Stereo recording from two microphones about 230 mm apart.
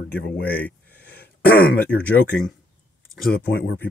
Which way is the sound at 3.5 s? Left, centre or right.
Left.